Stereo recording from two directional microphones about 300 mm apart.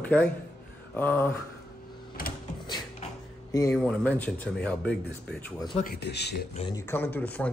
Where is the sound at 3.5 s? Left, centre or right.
Centre.